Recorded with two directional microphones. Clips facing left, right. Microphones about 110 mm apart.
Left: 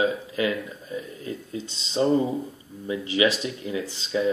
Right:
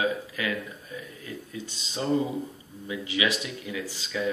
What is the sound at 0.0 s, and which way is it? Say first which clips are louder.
Speech: left 4 dB; 25° left (ahead or behind).